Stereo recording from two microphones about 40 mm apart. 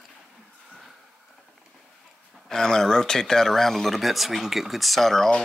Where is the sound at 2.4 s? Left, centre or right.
Centre.